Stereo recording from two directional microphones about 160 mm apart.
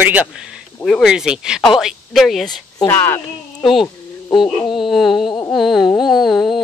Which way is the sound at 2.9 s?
15° left (ahead or behind).